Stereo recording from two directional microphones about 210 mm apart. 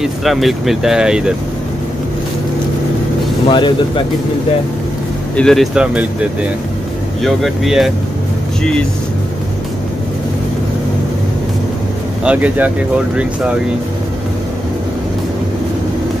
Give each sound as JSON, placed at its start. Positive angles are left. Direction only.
{"t": 0.0, "sound": "speech", "side_deg": 0}
{"t": 3.4, "sound": "speech", "side_deg": 25}
{"t": 5.3, "sound": "speech", "side_deg": 5}
{"t": 7.2, "sound": "speech", "side_deg": 0}
{"t": 12.3, "sound": "speech", "side_deg": -5}